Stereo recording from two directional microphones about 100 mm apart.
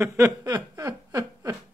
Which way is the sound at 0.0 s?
30° right (ahead or behind).